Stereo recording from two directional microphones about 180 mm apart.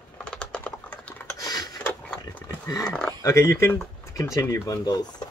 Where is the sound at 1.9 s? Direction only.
10° left (ahead or behind).